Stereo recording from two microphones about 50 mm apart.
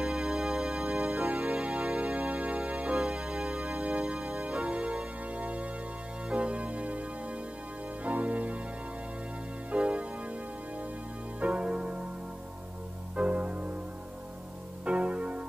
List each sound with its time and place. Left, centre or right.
0.0 s organ: centre
5.3 s music: right
6.2 s organ: right
9.7 s keyboard: right
11.3 s keyboard: right
13.1 s music: right
14.9 s keyboard: right